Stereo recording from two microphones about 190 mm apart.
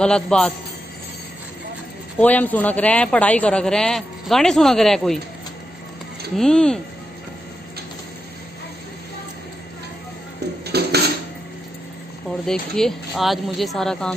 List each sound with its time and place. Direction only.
0.0 s speech: 5° left (ahead or behind)
2.1 s speech: 10° left (ahead or behind)
6.3 s speech: 5° left (ahead or behind)
10.6 s dishes: 60° right (ahead or behind)
12.4 s speech: 5° left (ahead or behind)